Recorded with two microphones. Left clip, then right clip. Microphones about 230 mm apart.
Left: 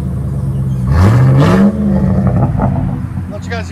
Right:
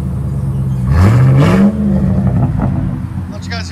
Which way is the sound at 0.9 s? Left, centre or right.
Centre.